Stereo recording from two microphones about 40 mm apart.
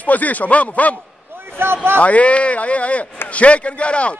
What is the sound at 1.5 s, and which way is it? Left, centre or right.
Speech, right.